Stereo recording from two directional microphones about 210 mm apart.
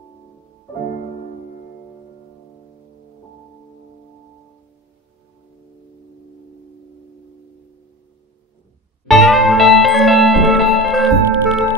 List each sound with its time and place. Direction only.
9.0 s music: centre (ahead or behind)